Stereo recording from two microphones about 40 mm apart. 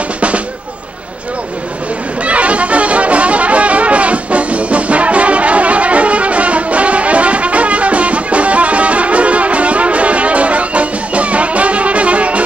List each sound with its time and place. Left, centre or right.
2.2 s music: right